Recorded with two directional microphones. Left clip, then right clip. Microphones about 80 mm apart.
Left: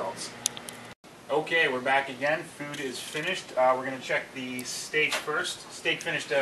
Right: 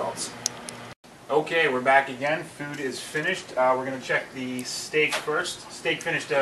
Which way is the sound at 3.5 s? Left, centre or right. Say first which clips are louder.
Right 1 dB; centre.